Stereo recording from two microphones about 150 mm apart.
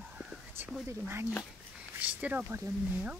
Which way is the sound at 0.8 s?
15° right (ahead or behind).